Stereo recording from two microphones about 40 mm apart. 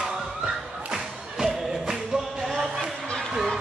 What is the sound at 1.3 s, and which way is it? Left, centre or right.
Music, centre.